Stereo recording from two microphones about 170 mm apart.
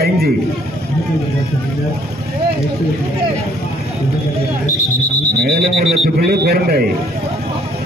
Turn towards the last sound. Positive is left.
turn(degrees=-70)  # may be behind; listen again after turning